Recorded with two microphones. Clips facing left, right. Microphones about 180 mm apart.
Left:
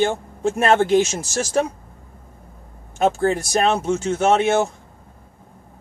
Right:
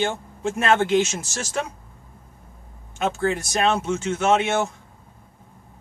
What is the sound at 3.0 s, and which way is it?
Speech, 35° left (ahead or behind).